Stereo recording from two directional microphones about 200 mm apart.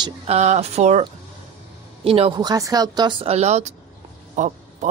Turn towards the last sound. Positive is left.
turn(degrees=-35)  # may be behind; listen again after turning